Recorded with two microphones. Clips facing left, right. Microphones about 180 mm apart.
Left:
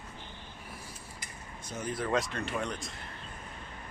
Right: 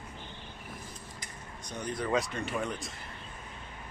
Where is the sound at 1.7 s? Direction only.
5° left (ahead or behind).